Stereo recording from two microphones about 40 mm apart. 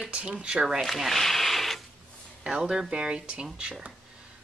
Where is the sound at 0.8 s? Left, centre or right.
Centre.